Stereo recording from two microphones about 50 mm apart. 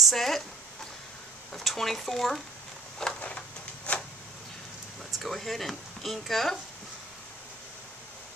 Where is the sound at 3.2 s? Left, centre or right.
Left.